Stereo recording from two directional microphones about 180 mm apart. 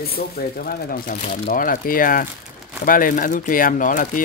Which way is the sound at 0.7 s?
50° left (ahead or behind).